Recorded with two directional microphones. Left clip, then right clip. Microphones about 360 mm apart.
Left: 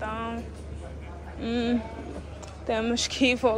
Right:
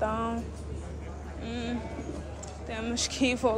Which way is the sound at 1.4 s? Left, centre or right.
Centre.